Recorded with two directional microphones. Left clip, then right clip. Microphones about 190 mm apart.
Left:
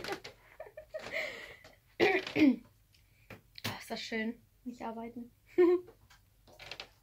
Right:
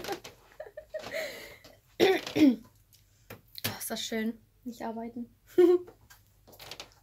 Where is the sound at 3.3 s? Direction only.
60° right (ahead or behind).